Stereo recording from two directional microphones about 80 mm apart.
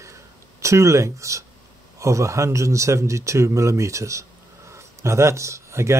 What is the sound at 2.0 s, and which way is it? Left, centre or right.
Speech, right.